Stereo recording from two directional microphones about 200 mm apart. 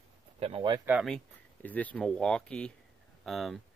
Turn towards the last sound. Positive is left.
turn(degrees=0)  # may be behind; listen again after turning